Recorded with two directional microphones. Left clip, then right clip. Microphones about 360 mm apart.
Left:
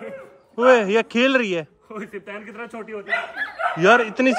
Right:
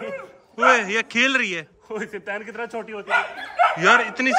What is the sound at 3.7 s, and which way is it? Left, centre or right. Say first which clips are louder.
Speech: left 6 dB; centre.